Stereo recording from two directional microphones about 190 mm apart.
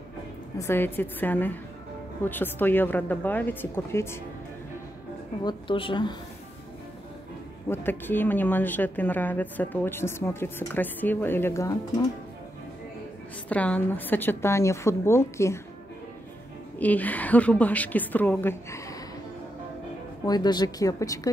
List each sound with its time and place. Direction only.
0.6 s speech: 10° left (ahead or behind)
5.4 s speech: 25° left (ahead or behind)
7.7 s speech: 10° left (ahead or behind)
13.5 s speech: 5° left (ahead or behind)
16.7 s speech: 10° left (ahead or behind)
20.2 s speech: 20° left (ahead or behind)